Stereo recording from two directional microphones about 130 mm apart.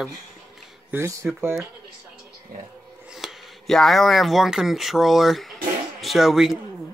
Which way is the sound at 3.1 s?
Centre (ahead or behind).